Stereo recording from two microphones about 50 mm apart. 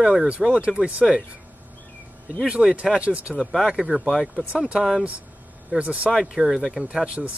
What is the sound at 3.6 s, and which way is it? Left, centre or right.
Speech, centre.